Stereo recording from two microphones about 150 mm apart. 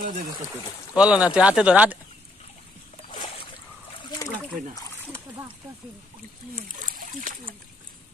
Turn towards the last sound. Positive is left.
turn(degrees=-60)  # may be behind; listen again after turning